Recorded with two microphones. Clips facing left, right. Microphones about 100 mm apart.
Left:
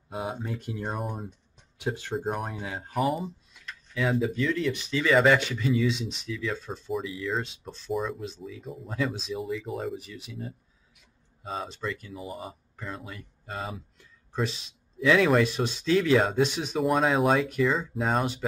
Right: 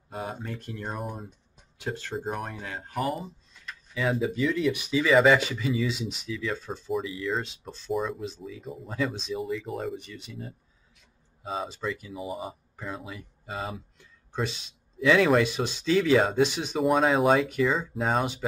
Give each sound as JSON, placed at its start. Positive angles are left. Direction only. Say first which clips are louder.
{"t": 0.1, "sound": "speech", "louder": "left 2 dB", "side_deg": 5}